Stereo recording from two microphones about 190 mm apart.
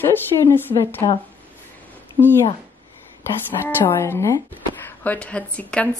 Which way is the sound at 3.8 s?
15° left (ahead or behind).